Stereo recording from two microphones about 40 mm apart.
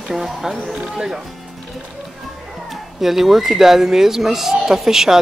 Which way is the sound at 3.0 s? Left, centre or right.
Centre.